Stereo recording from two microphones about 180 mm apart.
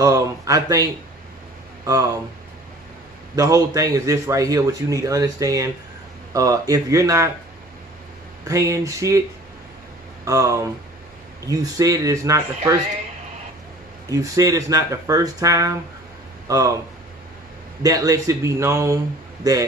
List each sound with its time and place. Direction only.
0.0 s speech: 20° right (ahead or behind)
3.3 s a man's voice: 20° right (ahead or behind)
8.5 s a man's voice: 15° right (ahead or behind)
10.2 s a man's voice: 20° right (ahead or behind)
14.0 s speech: 20° right (ahead or behind)
17.8 s a man's voice: 20° right (ahead or behind)